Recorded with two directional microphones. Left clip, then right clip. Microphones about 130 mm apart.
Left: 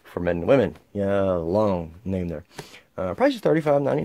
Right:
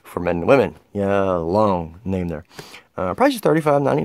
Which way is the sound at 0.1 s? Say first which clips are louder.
Right 4 dB; 40° right (ahead or behind).